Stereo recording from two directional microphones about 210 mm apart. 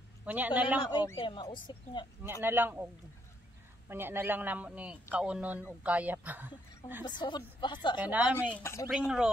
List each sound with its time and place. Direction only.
0.2 s a man's voice: 10° right (ahead or behind)
0.7 s speech: 20° left (ahead or behind)
2.4 s a woman's voice: 10° right (ahead or behind)
3.9 s a woman's voice: 10° right (ahead or behind)
7.1 s speech: 20° left (ahead or behind)
8.0 s a woman's voice: 5° right (ahead or behind)
8.5 s speech: 10° left (ahead or behind)
8.9 s speech: 5° right (ahead or behind)